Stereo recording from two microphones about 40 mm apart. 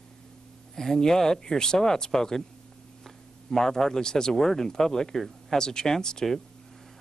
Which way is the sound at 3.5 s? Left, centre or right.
Centre.